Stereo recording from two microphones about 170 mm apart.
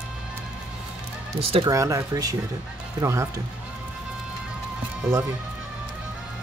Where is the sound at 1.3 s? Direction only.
35° right (ahead or behind).